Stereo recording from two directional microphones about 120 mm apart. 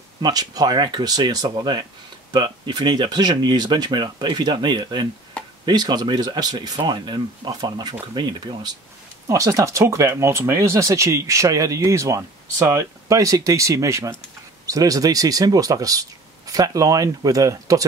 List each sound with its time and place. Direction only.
0.2 s speech: 35° right (ahead or behind)
9.3 s speech: 25° right (ahead or behind)